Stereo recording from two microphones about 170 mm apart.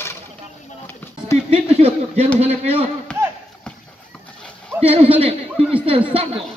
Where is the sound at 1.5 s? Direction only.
35° right (ahead or behind).